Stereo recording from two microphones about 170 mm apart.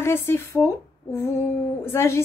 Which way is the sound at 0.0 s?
15° left (ahead or behind).